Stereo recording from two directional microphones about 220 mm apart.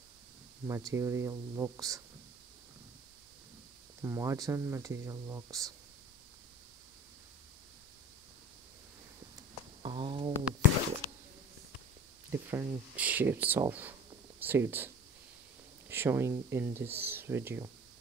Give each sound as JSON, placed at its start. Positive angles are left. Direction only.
{"t": 0.7, "sound": "speech", "side_deg": -10}
{"t": 4.0, "sound": "speech", "side_deg": -15}
{"t": 9.8, "sound": "speech", "side_deg": -25}
{"t": 12.3, "sound": "speech", "side_deg": -10}
{"t": 15.9, "sound": "speech", "side_deg": -10}